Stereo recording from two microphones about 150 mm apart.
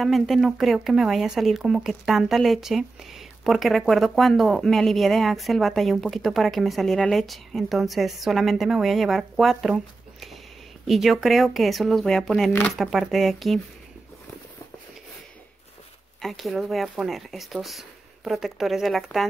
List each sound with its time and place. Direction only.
0.0 s speech: centre (ahead or behind)
10.9 s speech: centre (ahead or behind)
16.2 s speech: centre (ahead or behind)